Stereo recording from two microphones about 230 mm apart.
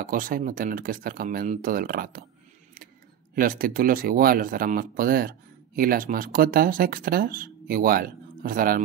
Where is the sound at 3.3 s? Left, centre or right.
Right.